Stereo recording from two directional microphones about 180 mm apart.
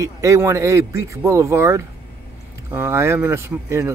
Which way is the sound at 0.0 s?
15° right (ahead or behind).